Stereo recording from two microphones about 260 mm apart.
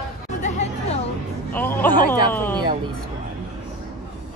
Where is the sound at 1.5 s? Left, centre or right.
Centre.